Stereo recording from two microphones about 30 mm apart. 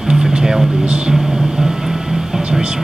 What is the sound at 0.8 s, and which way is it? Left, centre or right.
Speech, right.